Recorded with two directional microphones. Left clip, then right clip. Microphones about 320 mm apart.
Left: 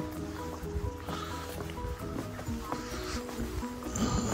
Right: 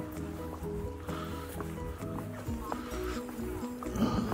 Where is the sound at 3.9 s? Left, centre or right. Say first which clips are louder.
Even; centre.